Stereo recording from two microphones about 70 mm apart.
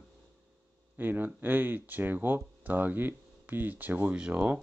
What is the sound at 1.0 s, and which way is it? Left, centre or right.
Speech, right.